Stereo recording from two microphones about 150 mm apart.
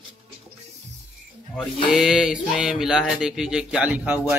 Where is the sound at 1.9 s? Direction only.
5° right (ahead or behind).